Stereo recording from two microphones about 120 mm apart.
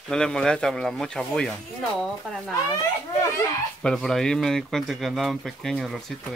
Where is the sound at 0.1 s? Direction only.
5° left (ahead or behind).